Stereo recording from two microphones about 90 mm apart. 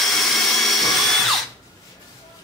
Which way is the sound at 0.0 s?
Centre (ahead or behind).